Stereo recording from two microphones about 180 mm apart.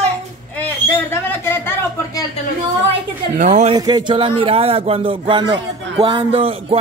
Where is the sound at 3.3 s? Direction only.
45° right (ahead or behind).